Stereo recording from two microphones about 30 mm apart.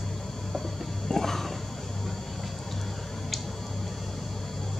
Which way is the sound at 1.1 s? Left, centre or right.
Centre.